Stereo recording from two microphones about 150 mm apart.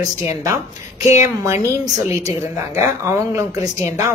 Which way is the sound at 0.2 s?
25° right (ahead or behind).